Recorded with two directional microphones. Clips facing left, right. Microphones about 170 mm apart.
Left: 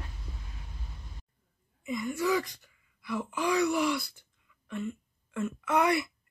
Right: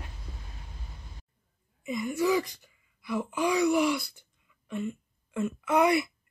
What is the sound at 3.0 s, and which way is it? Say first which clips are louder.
Wail: right 2 dB; 15° right (ahead or behind).